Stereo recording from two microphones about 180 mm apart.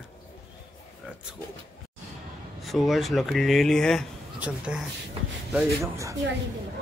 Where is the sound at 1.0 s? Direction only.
5° right (ahead or behind).